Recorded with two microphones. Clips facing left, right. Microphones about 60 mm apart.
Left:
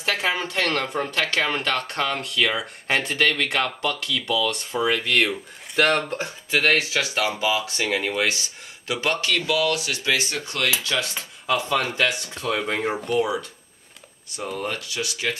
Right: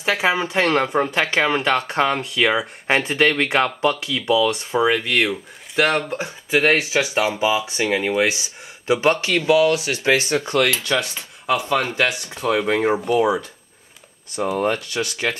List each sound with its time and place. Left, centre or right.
0.0 s speech: centre
8.8 s speech: right
10.8 s speech: centre
11.7 s speech: centre
14.6 s speech: right